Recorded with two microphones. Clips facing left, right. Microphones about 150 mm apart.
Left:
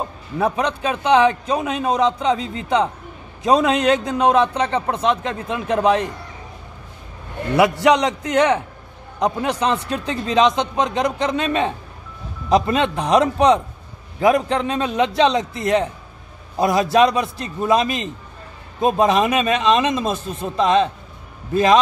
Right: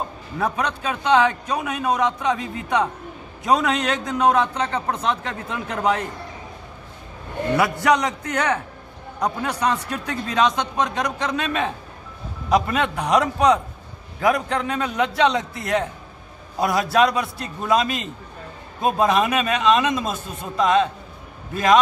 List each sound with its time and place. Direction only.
0.4 s a man's voice: 20° left (ahead or behind)
7.5 s a man's voice: 20° left (ahead or behind)